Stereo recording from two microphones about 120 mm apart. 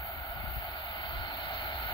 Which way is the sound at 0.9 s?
45° left (ahead or behind).